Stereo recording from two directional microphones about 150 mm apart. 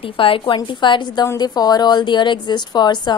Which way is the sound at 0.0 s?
35° left (ahead or behind).